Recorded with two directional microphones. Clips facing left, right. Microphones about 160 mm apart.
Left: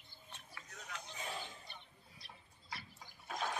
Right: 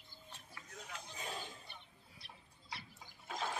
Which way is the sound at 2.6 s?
20° right (ahead or behind).